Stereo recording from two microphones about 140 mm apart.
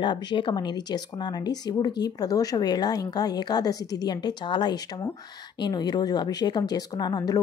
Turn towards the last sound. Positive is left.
turn(degrees=30)  # may be behind; listen again after turning